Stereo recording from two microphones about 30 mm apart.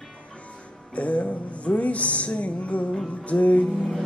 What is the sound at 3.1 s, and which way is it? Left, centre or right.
Music, left.